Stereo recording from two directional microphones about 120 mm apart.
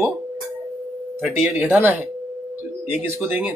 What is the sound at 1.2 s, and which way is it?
Speech, 10° right (ahead or behind).